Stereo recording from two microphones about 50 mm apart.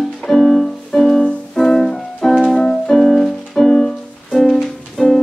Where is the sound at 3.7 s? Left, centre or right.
Centre.